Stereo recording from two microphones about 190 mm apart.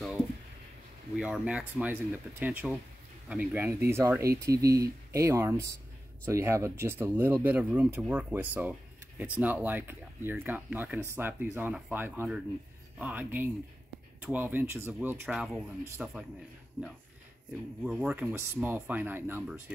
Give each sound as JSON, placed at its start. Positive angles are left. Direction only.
{"t": 1.1, "sound": "speech", "side_deg": -5}
{"t": 15.8, "sound": "speech", "side_deg": -15}
{"t": 17.8, "sound": "speech", "side_deg": -5}